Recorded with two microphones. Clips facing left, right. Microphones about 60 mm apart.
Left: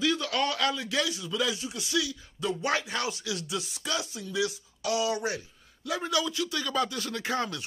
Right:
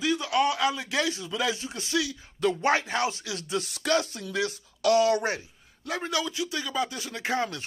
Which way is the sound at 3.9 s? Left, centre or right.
Right.